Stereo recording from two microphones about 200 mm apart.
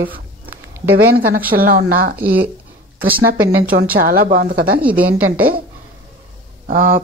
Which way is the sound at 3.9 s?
45° right (ahead or behind).